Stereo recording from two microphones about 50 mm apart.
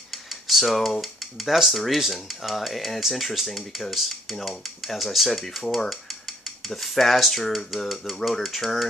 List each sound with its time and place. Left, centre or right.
0.1 s cutlery: centre
1.0 s speech: centre